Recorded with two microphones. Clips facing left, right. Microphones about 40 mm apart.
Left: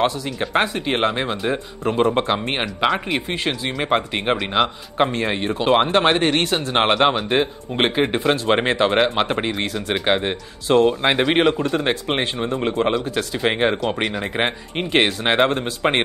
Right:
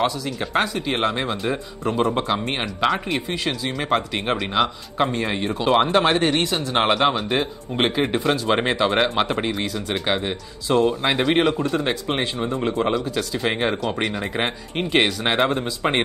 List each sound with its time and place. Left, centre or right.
0.0 s speech: centre
2.6 s speech: centre
3.3 s speech: left
6.2 s speech: left
10.0 s speech: left
13.1 s speech: left
13.4 s speech: centre